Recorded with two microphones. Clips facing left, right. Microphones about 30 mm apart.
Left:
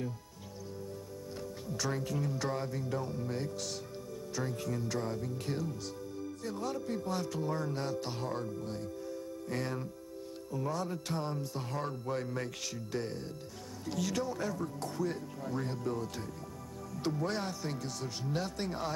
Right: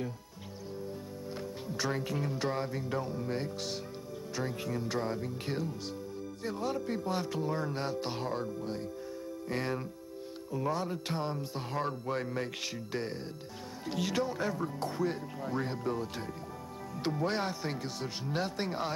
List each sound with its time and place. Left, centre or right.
1.8 s speech: right